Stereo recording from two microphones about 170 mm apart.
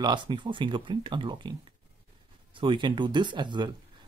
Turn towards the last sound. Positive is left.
turn(degrees=-25)  # may be behind; listen again after turning